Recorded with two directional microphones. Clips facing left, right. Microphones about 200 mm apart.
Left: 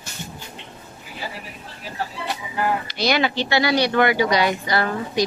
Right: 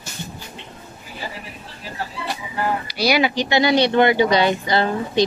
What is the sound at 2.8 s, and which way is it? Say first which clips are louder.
Speech: right 2 dB; 10° right (ahead or behind).